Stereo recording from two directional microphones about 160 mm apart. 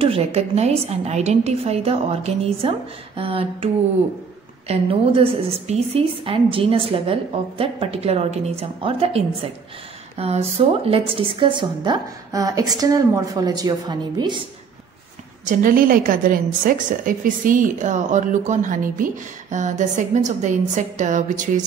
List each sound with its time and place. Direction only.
0.0 s a woman's voice: 40° right (ahead or behind)
15.4 s a woman's voice: 55° right (ahead or behind)